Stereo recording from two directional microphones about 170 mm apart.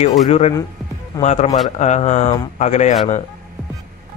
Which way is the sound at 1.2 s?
40° left (ahead or behind).